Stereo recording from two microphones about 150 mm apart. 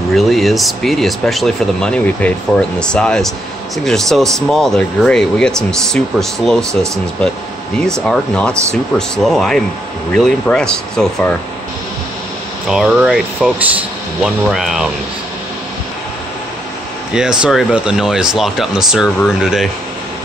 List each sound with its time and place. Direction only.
0.1 s speech: centre (ahead or behind)
7.8 s speech: 5° left (ahead or behind)
12.6 s speech: 5° right (ahead or behind)
17.1 s speech: 5° right (ahead or behind)